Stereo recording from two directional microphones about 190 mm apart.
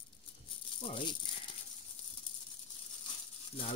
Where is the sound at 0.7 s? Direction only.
25° left (ahead or behind).